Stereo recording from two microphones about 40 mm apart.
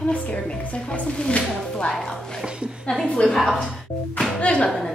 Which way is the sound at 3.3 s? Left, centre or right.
Centre.